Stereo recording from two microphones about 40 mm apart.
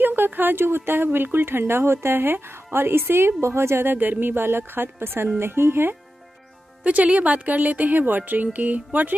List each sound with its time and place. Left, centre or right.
0.0 s speech: right
6.8 s speech: right